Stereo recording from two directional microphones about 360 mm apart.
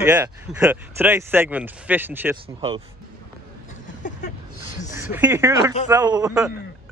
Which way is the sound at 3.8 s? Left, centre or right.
Left.